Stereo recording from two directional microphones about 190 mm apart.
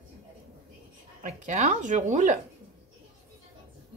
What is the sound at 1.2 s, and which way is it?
Speech, 35° right (ahead or behind).